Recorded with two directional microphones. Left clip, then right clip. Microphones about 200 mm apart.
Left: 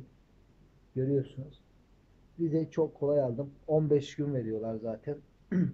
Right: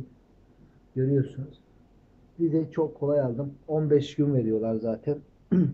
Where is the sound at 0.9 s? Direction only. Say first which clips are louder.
Right 4 dB; 15° left (ahead or behind).